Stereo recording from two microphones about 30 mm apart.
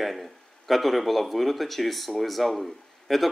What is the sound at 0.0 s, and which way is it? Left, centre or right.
Speech, centre.